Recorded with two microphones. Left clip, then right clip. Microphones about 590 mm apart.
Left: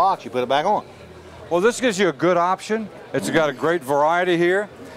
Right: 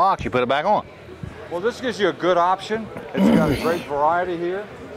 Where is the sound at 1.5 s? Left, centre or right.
Left.